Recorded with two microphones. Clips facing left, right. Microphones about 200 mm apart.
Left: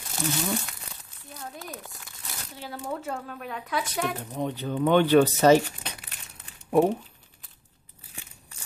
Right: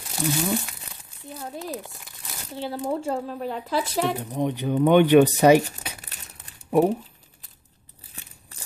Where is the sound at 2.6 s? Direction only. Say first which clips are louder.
Right 7 dB; 30° right (ahead or behind).